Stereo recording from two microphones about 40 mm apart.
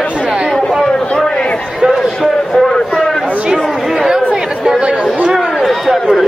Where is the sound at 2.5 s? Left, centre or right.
Centre.